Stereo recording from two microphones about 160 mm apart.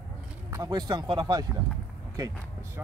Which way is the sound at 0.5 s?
25° right (ahead or behind).